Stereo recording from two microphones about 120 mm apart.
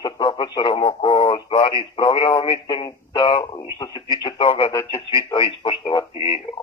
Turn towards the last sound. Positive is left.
turn(degrees=45)  # may be behind; listen again after turning